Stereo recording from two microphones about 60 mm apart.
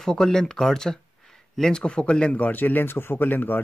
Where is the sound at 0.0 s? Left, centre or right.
Centre.